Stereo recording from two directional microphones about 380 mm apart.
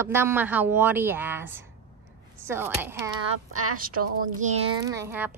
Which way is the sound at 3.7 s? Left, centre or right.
Right.